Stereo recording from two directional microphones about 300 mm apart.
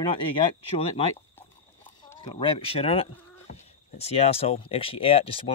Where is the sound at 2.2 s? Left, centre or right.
Centre.